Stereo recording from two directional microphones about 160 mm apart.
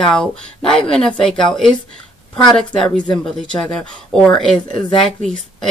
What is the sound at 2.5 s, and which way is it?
Speech, 5° left (ahead or behind).